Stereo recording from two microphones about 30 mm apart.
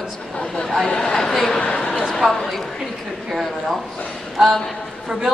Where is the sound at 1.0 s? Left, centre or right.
Centre.